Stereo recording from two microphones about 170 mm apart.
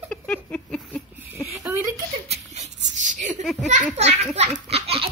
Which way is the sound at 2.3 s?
40° right (ahead or behind).